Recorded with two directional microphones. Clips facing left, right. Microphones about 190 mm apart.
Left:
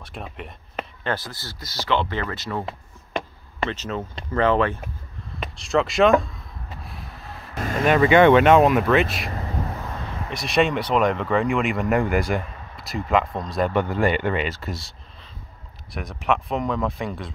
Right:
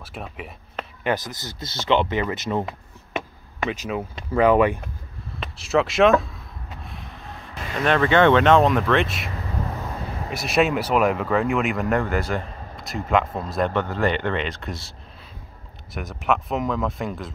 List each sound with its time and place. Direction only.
0.0 s speech: 5° right (ahead or behind)
1.0 s speech: 15° right (ahead or behind)
3.6 s speech: 10° right (ahead or behind)
5.4 s a sound: 5° right (ahead or behind)
7.8 s speech: 10° left (ahead or behind)
10.3 s speech: 5° right (ahead or behind)
12.0 s speech: 15° left (ahead or behind)
12.7 s speech: centre (ahead or behind)
13.7 s speech: 10° left (ahead or behind)